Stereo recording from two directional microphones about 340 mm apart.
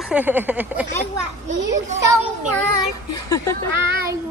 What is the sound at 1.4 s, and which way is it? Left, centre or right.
Speech, right.